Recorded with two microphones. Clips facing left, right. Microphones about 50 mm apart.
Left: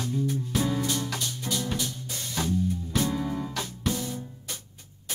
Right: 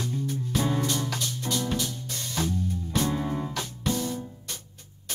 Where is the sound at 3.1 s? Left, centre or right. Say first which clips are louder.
Right 1 dB; centre.